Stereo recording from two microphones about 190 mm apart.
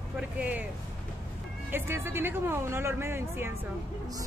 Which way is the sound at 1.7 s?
10° right (ahead or behind).